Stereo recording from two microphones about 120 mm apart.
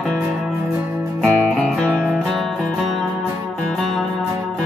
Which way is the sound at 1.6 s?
5° left (ahead or behind).